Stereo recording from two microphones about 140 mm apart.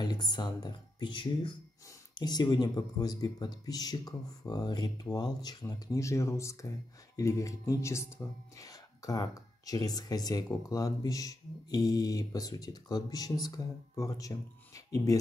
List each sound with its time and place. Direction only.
0.0 s speech: 30° left (ahead or behind)